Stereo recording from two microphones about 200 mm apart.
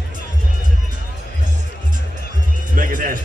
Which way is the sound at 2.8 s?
40° right (ahead or behind).